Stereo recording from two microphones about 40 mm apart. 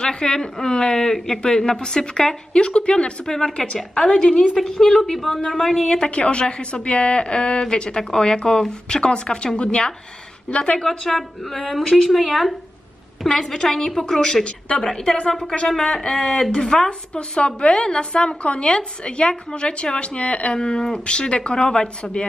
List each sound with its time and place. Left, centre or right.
0.0 s a woman's voice: left
6.0 s a woman's voice: left; by 16.5 s centre
17.1 s a woman's voice: left